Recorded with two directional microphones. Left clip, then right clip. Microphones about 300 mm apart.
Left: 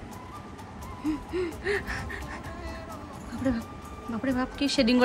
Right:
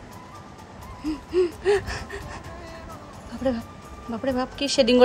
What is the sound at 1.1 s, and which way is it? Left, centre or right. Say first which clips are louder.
Gasp: right 7 dB; centre.